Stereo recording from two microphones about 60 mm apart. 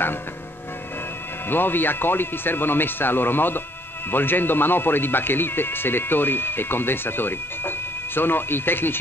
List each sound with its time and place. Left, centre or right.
1.5 s speech: left